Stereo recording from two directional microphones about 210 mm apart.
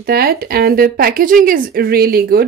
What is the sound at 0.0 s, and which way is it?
Speech, 45° right (ahead or behind).